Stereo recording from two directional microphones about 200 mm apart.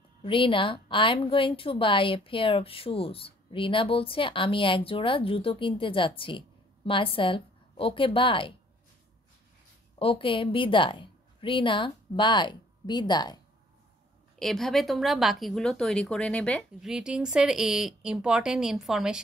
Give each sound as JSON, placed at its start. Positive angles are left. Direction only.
{"t": 0.2, "sound": "a woman's voice", "side_deg": 25}
{"t": 9.9, "sound": "a woman's voice", "side_deg": 25}
{"t": 14.4, "sound": "speech", "side_deg": 0}